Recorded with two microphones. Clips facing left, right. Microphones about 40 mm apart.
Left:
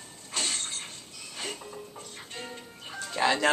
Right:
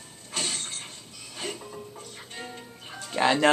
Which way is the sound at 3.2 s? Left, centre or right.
Centre.